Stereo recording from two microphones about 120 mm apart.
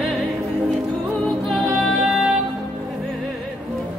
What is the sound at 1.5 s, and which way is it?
Music, centre (ahead or behind).